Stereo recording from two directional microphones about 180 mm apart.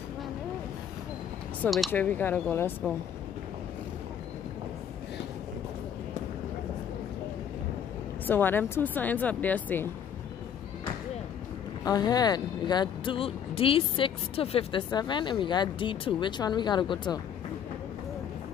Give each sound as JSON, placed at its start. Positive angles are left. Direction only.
{"t": 1.6, "sound": "speech", "side_deg": 0}
{"t": 8.3, "sound": "speech", "side_deg": 10}
{"t": 11.8, "sound": "speech", "side_deg": 20}